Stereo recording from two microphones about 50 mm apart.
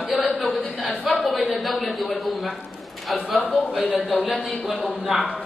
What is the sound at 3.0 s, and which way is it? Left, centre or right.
Speech, centre.